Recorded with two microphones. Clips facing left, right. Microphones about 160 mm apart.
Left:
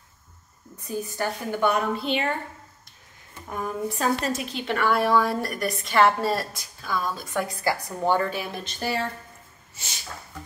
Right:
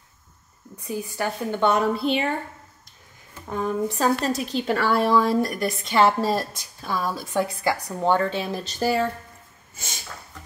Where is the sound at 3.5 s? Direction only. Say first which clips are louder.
Right 4 dB; 25° right (ahead or behind).